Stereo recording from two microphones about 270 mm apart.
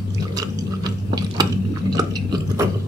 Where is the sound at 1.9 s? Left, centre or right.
Centre.